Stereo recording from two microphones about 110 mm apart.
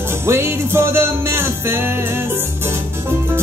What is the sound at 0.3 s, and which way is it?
Music, 20° right (ahead or behind).